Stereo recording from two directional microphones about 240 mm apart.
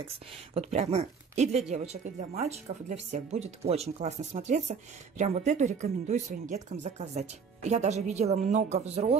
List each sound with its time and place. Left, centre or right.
0.6 s speech: right